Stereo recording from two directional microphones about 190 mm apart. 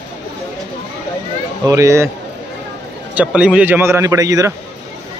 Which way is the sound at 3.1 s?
5° right (ahead or behind).